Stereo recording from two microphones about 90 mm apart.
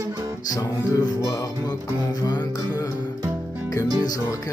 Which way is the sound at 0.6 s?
45° left (ahead or behind).